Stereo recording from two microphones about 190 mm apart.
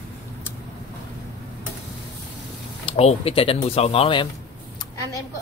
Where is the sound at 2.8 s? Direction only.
30° left (ahead or behind).